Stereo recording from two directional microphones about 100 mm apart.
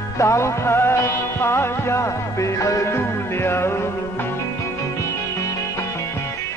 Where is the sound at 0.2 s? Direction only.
30° left (ahead or behind).